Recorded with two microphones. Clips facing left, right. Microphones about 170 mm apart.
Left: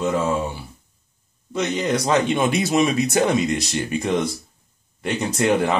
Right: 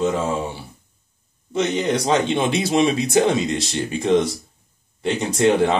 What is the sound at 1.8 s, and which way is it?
Speech, 25° right (ahead or behind).